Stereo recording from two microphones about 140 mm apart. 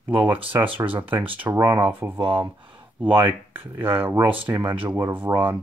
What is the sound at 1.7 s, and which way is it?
Speech, 15° right (ahead or behind).